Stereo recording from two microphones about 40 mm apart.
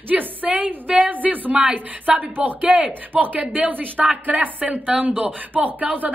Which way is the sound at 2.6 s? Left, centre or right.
Right.